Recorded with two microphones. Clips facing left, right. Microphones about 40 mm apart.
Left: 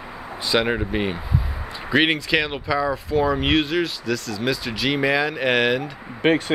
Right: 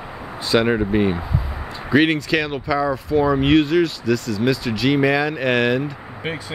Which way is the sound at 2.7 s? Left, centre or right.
Centre.